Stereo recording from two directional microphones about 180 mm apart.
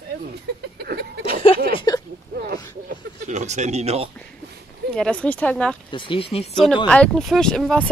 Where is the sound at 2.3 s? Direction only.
55° right (ahead or behind).